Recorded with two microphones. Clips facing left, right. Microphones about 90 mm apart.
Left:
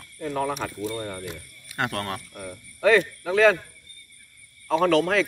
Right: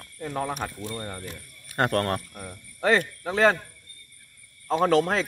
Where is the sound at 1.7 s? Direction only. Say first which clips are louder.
Right 4 dB; 45° right (ahead or behind).